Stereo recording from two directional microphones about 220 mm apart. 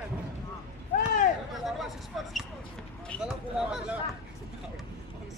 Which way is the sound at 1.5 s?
Centre (ahead or behind).